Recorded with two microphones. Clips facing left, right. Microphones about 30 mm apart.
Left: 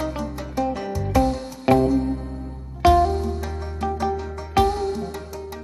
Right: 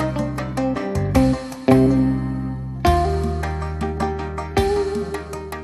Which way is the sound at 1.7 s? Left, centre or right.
Centre.